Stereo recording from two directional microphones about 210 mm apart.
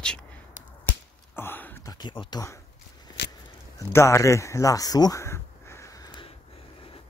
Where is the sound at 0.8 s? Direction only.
10° left (ahead or behind).